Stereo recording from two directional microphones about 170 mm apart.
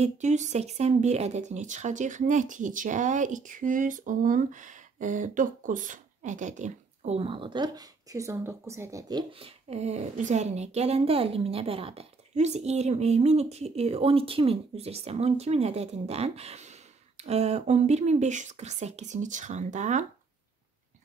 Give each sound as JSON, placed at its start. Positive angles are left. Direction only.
{"t": 0.0, "sound": "speech", "side_deg": -45}
{"t": 9.4, "sound": "a woman's voice", "side_deg": -40}